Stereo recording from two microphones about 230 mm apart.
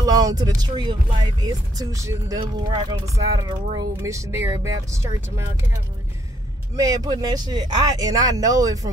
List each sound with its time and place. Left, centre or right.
0.0 s speech: centre
6.8 s speech: centre